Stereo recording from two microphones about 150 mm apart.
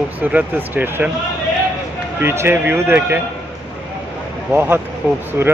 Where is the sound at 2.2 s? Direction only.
15° right (ahead or behind).